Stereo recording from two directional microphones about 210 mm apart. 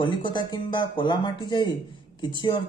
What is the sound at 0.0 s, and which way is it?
A man's voice, 20° left (ahead or behind).